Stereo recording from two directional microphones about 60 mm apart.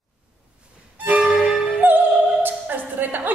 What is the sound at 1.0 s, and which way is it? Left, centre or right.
Violin, right.